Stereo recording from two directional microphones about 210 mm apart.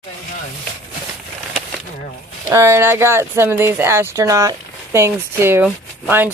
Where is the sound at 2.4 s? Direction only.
15° right (ahead or behind).